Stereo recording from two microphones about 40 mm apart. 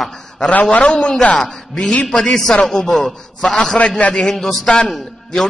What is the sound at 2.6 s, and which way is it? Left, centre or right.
A man's voice, centre.